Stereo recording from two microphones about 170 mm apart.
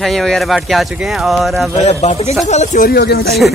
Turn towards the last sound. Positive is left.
turn(degrees=65)  # may be behind; listen again after turning